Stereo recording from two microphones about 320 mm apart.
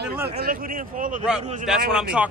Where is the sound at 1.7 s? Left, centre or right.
Centre.